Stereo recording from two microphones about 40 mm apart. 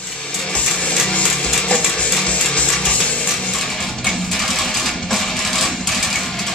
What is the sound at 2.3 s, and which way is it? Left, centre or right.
Music, left.